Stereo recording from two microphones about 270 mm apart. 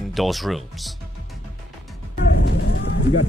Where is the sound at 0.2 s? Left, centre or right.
Centre.